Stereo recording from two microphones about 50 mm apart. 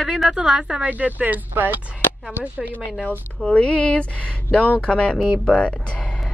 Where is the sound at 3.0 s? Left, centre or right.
Left.